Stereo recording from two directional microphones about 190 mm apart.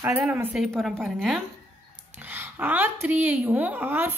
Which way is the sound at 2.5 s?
10° right (ahead or behind).